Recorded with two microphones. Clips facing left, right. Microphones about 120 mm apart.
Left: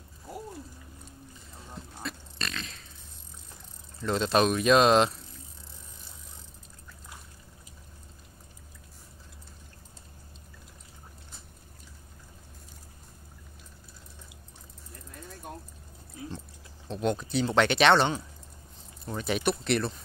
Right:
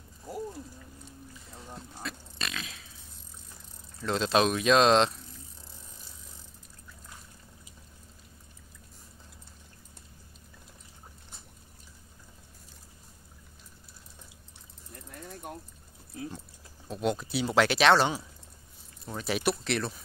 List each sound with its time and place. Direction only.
2.0 s a sound: 5° right (ahead or behind)
4.0 s speech: centre (ahead or behind)
16.8 s speech: 5° right (ahead or behind)